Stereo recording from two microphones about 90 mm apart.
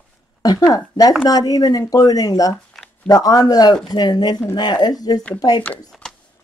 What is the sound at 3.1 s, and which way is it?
A woman's voice, 45° left (ahead or behind).